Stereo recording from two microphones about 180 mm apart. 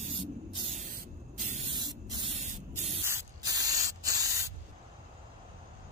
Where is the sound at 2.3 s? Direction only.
40° right (ahead or behind).